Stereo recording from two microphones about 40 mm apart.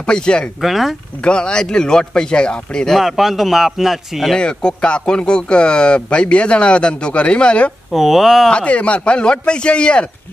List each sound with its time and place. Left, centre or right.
0.0 s speech: left
0.6 s speech: centre
1.2 s speech: left
3.0 s speech: centre
4.4 s speech: left
7.9 s speech: centre
8.5 s speech: left